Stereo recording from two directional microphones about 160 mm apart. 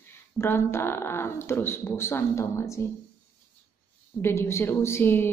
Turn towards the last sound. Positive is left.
turn(degrees=15)  # may be behind; listen again after turning